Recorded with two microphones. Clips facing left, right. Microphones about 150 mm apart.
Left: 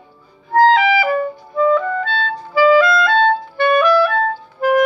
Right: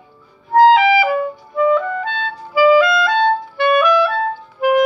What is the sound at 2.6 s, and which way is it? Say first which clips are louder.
Clarinet: even; 10° right (ahead or behind).